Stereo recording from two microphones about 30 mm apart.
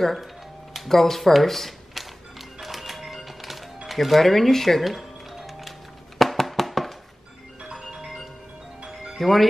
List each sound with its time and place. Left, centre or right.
0.0 s speech: centre
2.6 s music: centre
4.8 s music: centre
7.8 s music: centre
9.2 s speech: centre